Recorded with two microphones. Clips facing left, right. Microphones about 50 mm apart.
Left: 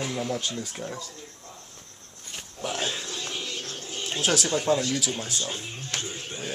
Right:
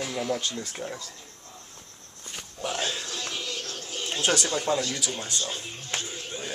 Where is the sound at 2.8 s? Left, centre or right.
Centre.